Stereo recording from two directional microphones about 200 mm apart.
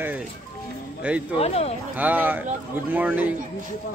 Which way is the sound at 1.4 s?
30° left (ahead or behind).